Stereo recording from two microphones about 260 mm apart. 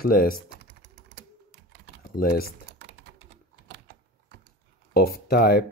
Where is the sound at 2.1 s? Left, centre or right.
Left.